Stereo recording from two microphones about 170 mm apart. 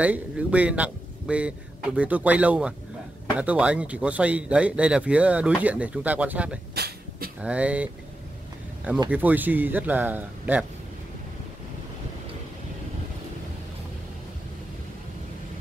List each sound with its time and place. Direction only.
0.0 s speech: 10° right (ahead or behind)
6.7 s a sound: 70° right (ahead or behind)
7.4 s speech: 10° right (ahead or behind)
9.1 s speech: 10° right (ahead or behind)